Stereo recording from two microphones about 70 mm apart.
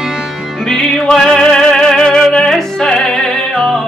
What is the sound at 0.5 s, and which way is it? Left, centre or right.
Music, centre.